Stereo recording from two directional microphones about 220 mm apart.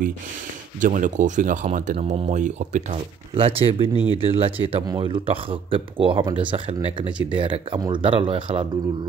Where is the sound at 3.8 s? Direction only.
20° left (ahead or behind).